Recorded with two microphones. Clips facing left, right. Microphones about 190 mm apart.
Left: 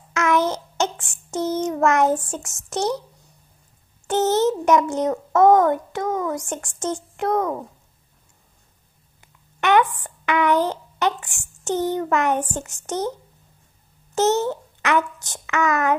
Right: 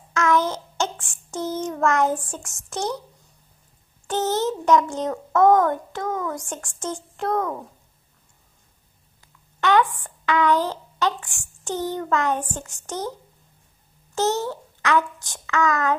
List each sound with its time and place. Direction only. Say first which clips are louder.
0.1 s child singing: left 1 dB; 20° left (ahead or behind)
4.1 s a child's voice: left 4 dB; 20° left (ahead or behind)
9.2 s a sound: even; 20° left (ahead or behind)
9.9 s a child's voice: even; 20° left (ahead or behind)
14.1 s a child's voice: left 4 dB; 20° left (ahead or behind)